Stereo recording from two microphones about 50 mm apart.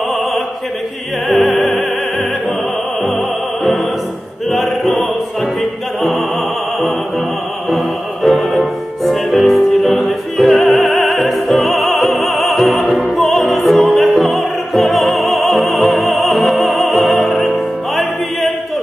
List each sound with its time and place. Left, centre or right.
1.3 s music: centre
3.1 s music: centre
7.7 s music: centre
13.0 s opera: centre
13.7 s music: centre